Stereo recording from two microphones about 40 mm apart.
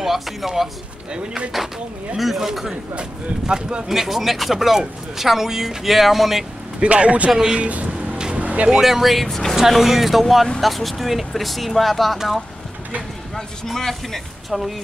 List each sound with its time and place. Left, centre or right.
0.0 s speech: centre
1.1 s speech: right
2.1 s speech: centre
3.0 s speech: right
3.9 s speech: centre
6.8 s speech: right
7.2 s speech: centre
7.6 s music: right
8.2 s vehicle: right
8.8 s speech: centre
9.6 s speech: centre
13.7 s speech: centre
14.5 s speech: centre